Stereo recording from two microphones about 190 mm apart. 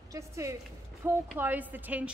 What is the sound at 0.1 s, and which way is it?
A woman's voice, 15° right (ahead or behind).